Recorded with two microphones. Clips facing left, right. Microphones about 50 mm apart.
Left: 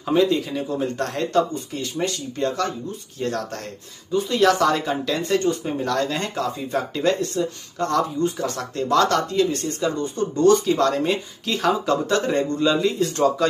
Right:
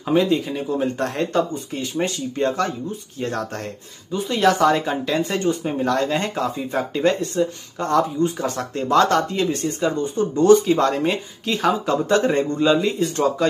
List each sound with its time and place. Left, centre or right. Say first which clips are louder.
0.0 s speech: right 1 dB; centre